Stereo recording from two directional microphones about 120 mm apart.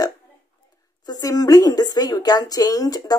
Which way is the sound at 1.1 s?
30° left (ahead or behind).